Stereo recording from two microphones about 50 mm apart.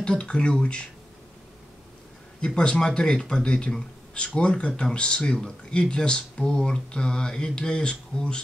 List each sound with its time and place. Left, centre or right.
0.0 s speech: centre
2.4 s speech: centre